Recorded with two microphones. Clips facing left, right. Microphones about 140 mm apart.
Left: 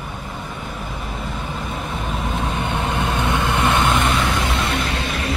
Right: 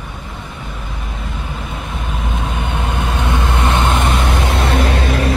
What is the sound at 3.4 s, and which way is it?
Vehicle, 15° right (ahead or behind).